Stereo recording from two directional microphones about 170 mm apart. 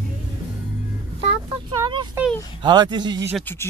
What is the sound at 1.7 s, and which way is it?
Speech, 25° right (ahead or behind).